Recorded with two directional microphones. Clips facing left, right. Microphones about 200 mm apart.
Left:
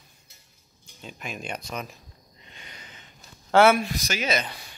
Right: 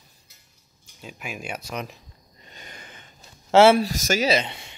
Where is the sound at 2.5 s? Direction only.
45° right (ahead or behind).